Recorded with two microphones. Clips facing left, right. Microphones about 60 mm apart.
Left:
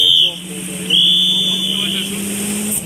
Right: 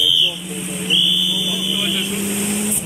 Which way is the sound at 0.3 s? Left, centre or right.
Centre.